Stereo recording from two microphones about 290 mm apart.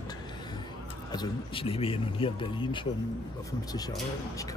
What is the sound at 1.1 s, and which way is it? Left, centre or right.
A man's voice, centre.